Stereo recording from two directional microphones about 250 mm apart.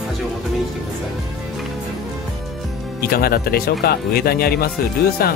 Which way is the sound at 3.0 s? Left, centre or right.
Left.